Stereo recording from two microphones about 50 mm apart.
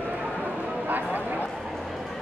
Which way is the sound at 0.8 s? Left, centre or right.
Right.